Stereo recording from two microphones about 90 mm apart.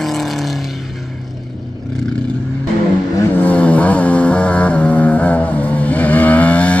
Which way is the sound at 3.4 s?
15° left (ahead or behind).